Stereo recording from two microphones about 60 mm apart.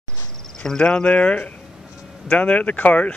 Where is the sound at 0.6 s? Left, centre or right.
Centre.